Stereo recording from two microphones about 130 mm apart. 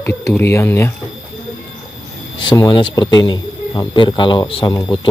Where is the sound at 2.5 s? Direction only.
35° left (ahead or behind).